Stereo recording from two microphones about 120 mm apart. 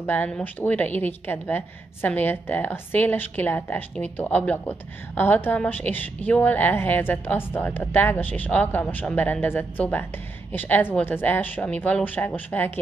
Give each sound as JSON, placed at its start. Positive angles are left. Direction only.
{"t": 0.0, "sound": "a woman's voice", "side_deg": 15}